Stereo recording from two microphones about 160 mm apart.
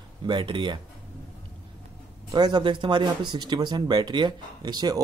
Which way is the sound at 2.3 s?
25° right (ahead or behind).